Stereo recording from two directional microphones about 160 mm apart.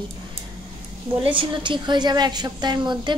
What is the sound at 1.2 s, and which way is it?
A woman's voice, 30° right (ahead or behind).